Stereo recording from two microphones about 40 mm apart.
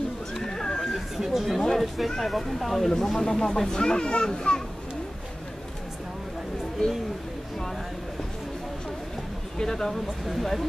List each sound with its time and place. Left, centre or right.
0.3 s neigh: centre
0.9 s a sound: centre
1.7 s speech: centre
2.9 s a child's voice: centre
9.6 s a child's voice: centre